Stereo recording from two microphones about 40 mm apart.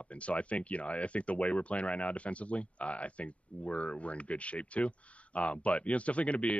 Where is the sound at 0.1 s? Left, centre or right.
Left.